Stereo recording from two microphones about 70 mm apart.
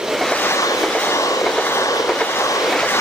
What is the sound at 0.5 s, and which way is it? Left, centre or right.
Vehicle, left.